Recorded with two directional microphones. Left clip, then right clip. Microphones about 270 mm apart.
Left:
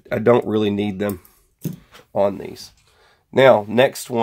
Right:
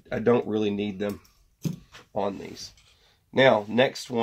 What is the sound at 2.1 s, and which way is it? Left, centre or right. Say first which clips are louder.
Speech: left 10 dB; left.